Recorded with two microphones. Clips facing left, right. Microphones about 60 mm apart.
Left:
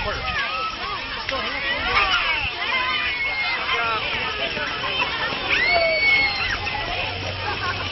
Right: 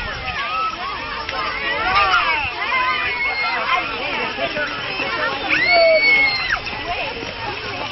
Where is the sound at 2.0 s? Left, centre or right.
Right.